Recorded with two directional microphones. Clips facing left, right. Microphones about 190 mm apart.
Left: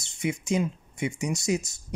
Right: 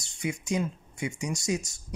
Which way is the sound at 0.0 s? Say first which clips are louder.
Left 3 dB; 25° left (ahead or behind).